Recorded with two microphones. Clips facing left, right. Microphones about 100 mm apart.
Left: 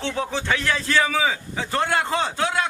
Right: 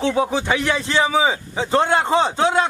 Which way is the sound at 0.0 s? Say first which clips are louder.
Right 7 dB; 15° right (ahead or behind).